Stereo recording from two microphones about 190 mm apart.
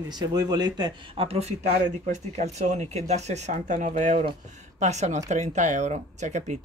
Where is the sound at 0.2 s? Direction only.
20° right (ahead or behind).